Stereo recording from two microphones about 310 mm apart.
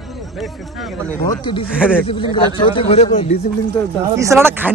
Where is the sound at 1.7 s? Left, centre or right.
Centre.